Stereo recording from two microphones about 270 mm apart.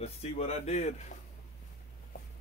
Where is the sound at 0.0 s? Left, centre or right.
Left.